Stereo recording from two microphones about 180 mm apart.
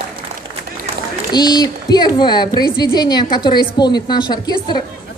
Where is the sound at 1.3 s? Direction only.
25° left (ahead or behind).